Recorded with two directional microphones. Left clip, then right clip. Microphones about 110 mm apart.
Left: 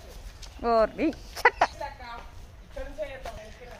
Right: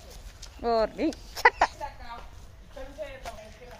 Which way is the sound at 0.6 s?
10° left (ahead or behind).